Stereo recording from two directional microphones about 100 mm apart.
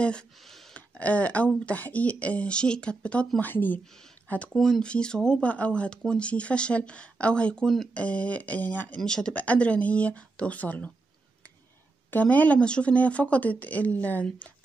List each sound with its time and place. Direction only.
0.0 s speech: 5° left (ahead or behind)
4.6 s speech: 5° left (ahead or behind)
8.0 s speech: 15° left (ahead or behind)
12.1 s speech: 15° left (ahead or behind)